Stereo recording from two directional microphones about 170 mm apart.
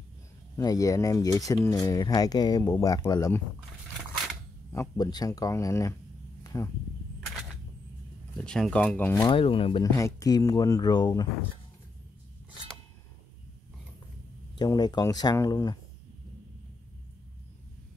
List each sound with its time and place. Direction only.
0.6 s speech: 20° left (ahead or behind)
4.7 s speech: 20° left (ahead or behind)
6.4 s a sound: 20° left (ahead or behind)
8.4 s speech: 5° left (ahead or behind)
9.3 s speech: 30° left (ahead or behind)
14.6 s speech: 25° left (ahead or behind)